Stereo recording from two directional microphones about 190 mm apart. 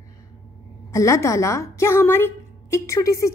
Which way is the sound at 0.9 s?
15° left (ahead or behind).